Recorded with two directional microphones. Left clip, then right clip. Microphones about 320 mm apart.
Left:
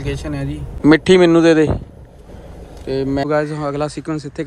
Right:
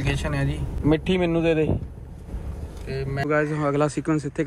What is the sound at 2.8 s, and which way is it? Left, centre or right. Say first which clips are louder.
Speech: left 8 dB; centre.